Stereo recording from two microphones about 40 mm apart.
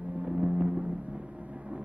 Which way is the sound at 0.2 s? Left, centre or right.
Right.